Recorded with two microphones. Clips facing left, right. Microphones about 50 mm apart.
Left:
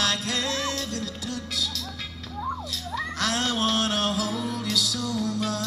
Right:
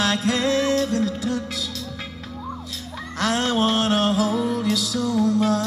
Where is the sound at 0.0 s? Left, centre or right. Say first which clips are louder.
Right 6 dB; centre.